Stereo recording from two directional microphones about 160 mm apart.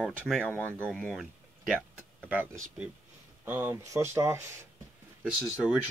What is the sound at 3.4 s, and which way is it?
Speech, 10° right (ahead or behind).